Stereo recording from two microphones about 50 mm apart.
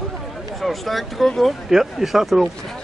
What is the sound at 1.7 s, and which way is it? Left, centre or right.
Speech, centre.